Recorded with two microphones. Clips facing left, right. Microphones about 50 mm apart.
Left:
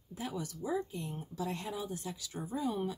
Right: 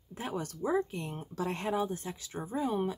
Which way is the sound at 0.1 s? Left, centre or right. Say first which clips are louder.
Right 3 dB; right.